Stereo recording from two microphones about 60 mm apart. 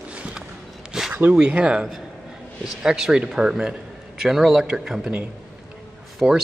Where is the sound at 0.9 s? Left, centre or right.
Centre.